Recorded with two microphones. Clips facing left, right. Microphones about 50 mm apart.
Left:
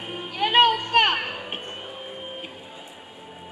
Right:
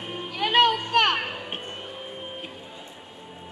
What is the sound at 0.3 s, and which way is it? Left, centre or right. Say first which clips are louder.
Music: left 2 dB; left.